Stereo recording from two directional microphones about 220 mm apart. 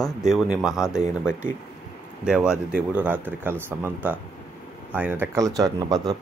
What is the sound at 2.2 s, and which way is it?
Speech, 5° right (ahead or behind).